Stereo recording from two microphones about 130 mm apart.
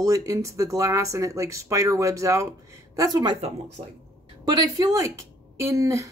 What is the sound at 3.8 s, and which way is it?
Speech, 60° right (ahead or behind).